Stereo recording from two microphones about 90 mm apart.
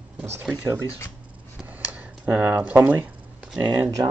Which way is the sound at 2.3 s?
20° right (ahead or behind).